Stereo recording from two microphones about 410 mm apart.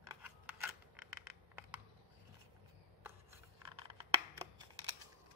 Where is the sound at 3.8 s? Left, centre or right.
Centre.